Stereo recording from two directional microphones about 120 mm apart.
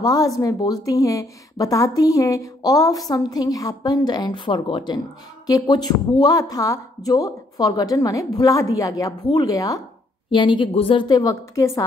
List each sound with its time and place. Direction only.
0.0 s a woman's voice: 30° left (ahead or behind)
10.3 s a woman's voice: 40° left (ahead or behind); by 11.8 s 25° left (ahead or behind)